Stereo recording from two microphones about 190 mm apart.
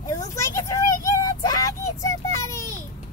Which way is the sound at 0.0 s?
15° left (ahead or behind).